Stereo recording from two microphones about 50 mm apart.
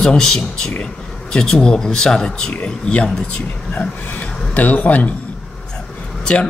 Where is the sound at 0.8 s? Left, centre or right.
Centre; by 5.1 s left.